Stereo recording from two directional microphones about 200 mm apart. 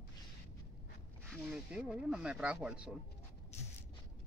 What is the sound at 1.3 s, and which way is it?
Speech, 5° right (ahead or behind).